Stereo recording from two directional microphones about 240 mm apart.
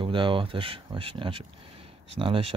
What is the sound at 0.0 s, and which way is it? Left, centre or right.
Speech, right.